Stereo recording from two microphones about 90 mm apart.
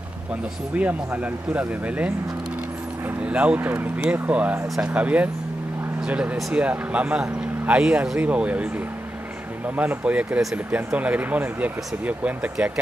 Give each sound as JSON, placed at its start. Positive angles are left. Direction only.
{"t": 0.7, "sound": "speech", "side_deg": -15}
{"t": 3.3, "sound": "speech", "side_deg": -15}
{"t": 9.8, "sound": "speech", "side_deg": -15}